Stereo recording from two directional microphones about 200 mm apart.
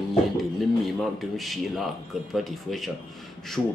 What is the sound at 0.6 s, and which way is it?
Speech, centre (ahead or behind).